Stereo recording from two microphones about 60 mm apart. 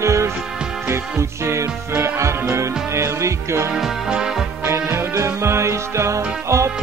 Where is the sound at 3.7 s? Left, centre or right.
Centre.